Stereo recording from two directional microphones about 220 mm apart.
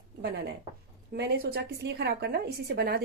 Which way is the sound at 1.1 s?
45° right (ahead or behind).